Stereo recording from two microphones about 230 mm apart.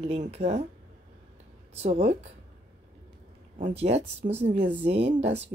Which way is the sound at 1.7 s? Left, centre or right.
Right.